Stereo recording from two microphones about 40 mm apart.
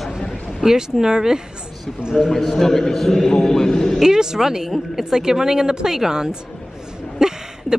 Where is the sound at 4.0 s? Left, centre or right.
Centre.